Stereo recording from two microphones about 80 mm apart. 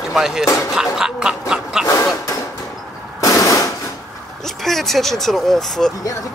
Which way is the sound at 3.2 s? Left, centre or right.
Left.